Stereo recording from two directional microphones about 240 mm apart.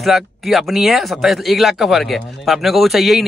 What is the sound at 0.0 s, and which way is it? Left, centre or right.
Speech, centre.